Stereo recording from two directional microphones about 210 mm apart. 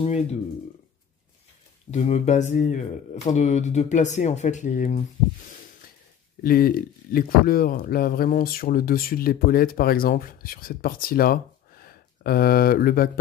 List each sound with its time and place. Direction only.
0.0 s speech: 30° left (ahead or behind)
1.9 s speech: 35° left (ahead or behind)
6.4 s speech: 45° left (ahead or behind)